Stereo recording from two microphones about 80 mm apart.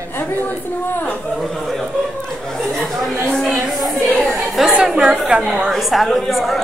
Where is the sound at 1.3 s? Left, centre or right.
Centre.